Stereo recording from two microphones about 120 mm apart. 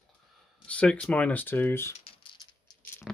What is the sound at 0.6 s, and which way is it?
Speech, 10° left (ahead or behind).